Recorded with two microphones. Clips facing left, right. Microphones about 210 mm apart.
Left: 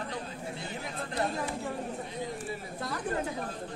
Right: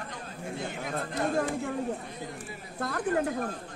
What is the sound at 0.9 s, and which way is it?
Speech, 50° right (ahead or behind).